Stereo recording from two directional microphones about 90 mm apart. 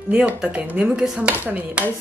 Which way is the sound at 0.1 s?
15° right (ahead or behind).